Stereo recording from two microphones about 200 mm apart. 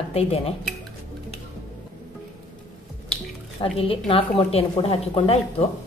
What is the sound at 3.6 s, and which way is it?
A woman's voice, 30° left (ahead or behind).